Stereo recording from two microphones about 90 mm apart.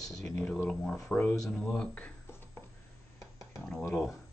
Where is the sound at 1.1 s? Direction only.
20° left (ahead or behind).